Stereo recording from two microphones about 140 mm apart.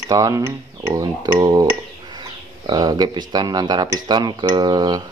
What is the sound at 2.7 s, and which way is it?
Speech, 25° right (ahead or behind).